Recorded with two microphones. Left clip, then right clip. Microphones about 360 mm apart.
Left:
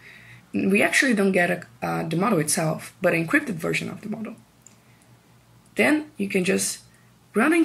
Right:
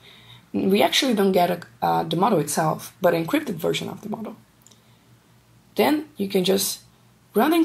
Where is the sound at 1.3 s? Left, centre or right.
Right.